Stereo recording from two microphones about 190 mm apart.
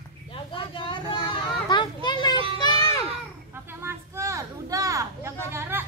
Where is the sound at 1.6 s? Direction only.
25° left (ahead or behind).